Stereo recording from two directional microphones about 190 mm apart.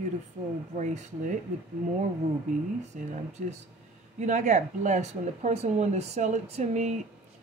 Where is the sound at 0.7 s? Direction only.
40° right (ahead or behind).